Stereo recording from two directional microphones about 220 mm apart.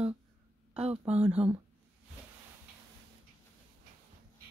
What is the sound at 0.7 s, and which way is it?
Speech, 30° right (ahead or behind).